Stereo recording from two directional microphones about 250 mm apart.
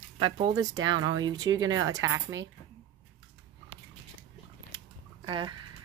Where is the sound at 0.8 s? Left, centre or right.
Right.